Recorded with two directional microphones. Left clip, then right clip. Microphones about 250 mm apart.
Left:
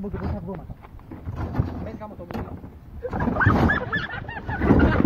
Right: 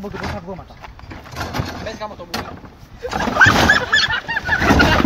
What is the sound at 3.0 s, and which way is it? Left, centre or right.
Bird, right.